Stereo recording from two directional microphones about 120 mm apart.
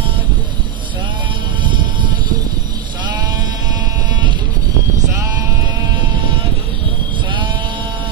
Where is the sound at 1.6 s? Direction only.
40° right (ahead or behind).